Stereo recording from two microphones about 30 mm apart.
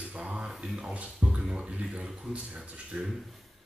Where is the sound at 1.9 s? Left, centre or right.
Right.